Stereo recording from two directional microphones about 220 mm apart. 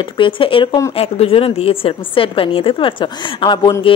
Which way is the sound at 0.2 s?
25° left (ahead or behind).